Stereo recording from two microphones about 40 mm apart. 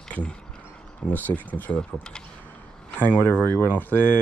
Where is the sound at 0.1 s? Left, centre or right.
Left.